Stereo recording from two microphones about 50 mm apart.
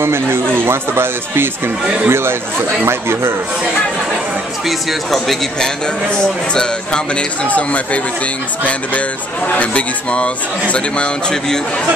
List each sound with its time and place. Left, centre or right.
0.0 s speech: right
4.6 s speech: centre
6.0 s speech: centre
7.4 s speech: left
9.5 s speech: left